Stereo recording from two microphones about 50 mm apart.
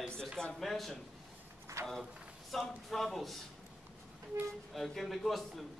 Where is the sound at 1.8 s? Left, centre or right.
Right.